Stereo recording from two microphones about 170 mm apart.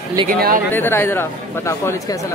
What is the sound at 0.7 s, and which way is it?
Speech, 15° left (ahead or behind).